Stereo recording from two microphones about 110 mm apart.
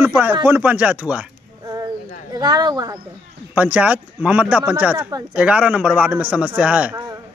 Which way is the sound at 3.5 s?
15° right (ahead or behind).